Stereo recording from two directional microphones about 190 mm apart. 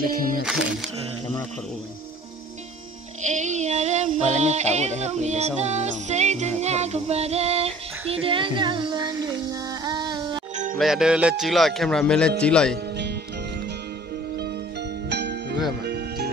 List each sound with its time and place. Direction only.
0.1 s speech: 50° right (ahead or behind)
3.2 s a sound: 40° right (ahead or behind)
8.1 s music: 30° right (ahead or behind)
10.5 s music: 40° right (ahead or behind)
10.8 s speech: centre (ahead or behind)
12.7 s music: 60° right (ahead or behind)